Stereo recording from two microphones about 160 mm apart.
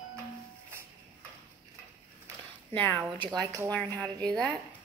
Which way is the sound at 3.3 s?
20° right (ahead or behind).